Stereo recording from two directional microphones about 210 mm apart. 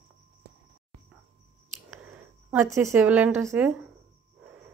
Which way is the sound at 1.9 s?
5° right (ahead or behind).